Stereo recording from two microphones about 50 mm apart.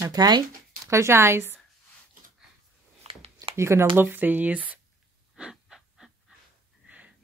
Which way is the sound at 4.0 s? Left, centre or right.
Right.